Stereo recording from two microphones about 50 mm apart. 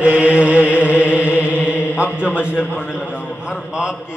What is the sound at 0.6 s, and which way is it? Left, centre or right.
Chant, left.